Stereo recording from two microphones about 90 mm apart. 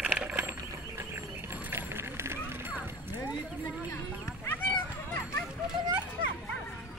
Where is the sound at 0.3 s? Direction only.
20° right (ahead or behind).